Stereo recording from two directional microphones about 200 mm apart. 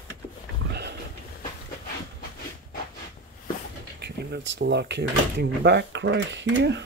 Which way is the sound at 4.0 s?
55° right (ahead or behind).